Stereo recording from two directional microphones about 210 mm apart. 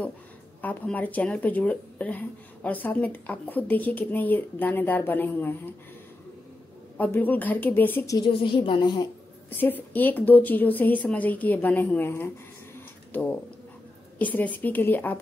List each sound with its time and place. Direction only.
0.6 s speech: 10° left (ahead or behind)
7.0 s speech: 10° left (ahead or behind)
8.2 s a woman's voice: 25° left (ahead or behind)
9.6 s speech: 10° left (ahead or behind)
12.7 s a sound: 10° left (ahead or behind)
14.1 s speech: 5° left (ahead or behind)